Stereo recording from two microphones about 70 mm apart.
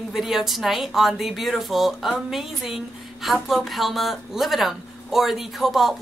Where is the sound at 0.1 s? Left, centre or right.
Centre.